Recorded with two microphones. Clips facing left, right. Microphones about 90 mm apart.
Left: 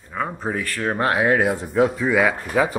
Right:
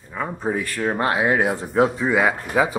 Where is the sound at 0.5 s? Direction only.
15° right (ahead or behind).